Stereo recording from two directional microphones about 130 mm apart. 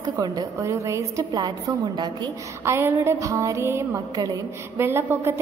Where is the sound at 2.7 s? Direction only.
20° right (ahead or behind).